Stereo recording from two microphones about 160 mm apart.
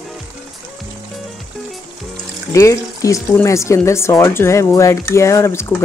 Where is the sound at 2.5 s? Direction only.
20° left (ahead or behind).